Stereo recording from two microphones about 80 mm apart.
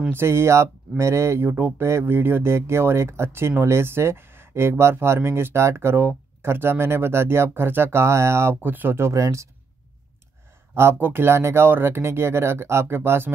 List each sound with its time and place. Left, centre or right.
0.1 s speech: right
10.7 s speech: right